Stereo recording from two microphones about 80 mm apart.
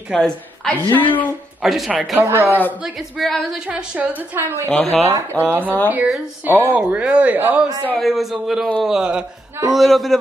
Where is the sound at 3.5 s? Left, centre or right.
Centre.